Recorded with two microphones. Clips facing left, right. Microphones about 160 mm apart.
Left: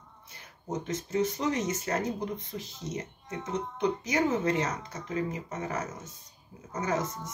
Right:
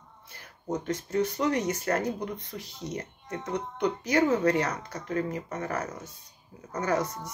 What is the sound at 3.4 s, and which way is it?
Speech, 65° right (ahead or behind).